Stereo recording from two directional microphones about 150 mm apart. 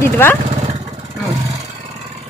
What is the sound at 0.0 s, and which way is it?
Speech, 15° left (ahead or behind).